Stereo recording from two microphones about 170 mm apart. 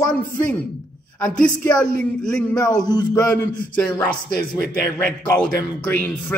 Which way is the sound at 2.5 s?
20° left (ahead or behind).